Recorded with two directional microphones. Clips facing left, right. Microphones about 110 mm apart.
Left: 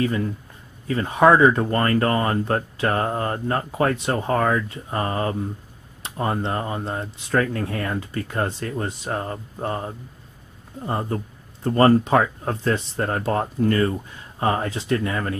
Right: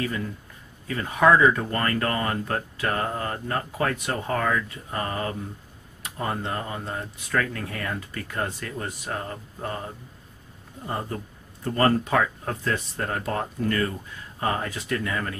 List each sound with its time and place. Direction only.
0.0 s speech: 30° left (ahead or behind)
11.1 s speech: 30° left (ahead or behind)